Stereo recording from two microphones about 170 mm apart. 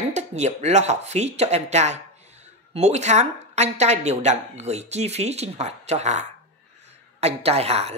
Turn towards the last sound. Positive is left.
turn(degrees=-40)  # may be behind; listen again after turning